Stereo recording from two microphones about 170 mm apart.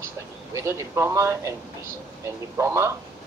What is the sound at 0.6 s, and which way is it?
A man's voice, 15° right (ahead or behind).